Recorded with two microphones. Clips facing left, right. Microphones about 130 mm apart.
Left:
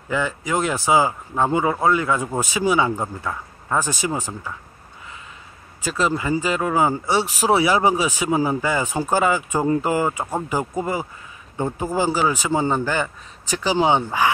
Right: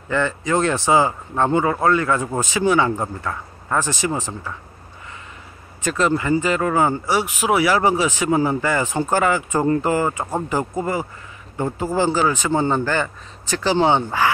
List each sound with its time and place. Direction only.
0.1 s speech: 5° left (ahead or behind)
5.9 s speech: 10° left (ahead or behind)
7.1 s speech: 30° left (ahead or behind)
7.6 s speech: 20° left (ahead or behind)